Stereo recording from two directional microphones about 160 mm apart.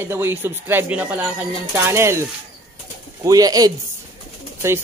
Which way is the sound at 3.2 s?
25° right (ahead or behind).